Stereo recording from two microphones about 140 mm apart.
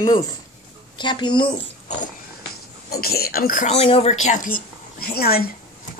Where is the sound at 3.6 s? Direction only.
50° left (ahead or behind).